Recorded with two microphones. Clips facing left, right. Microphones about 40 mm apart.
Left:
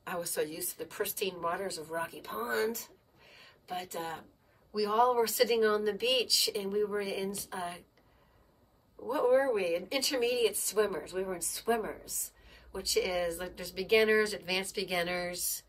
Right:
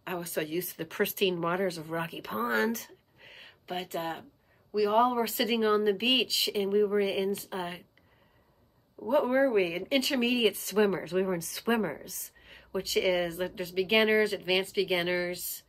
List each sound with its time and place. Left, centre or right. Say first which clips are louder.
0.0 s speech: right 1 dB; right
9.1 s speech: right 2 dB; right